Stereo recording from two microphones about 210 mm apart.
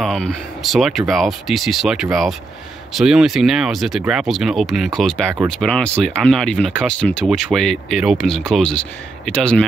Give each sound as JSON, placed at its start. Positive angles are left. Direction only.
{"t": 0.0, "sound": "speech", "side_deg": 0}